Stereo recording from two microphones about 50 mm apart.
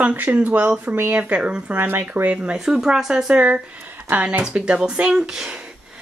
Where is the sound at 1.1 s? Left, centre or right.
Right.